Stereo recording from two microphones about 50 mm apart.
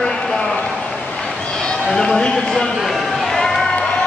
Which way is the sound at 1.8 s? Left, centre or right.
Centre.